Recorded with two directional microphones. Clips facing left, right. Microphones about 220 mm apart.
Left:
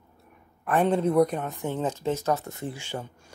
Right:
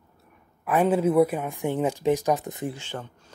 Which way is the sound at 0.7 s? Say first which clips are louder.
Right 2 dB; 5° right (ahead or behind).